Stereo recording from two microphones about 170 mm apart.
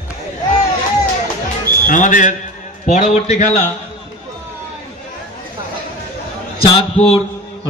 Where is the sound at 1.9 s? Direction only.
50° left (ahead or behind).